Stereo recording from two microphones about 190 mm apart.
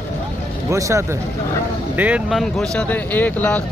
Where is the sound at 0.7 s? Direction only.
15° right (ahead or behind).